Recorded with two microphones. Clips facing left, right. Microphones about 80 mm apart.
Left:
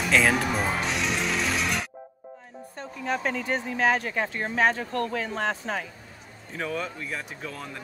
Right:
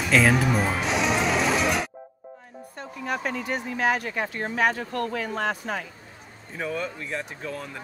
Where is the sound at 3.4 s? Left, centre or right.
Left.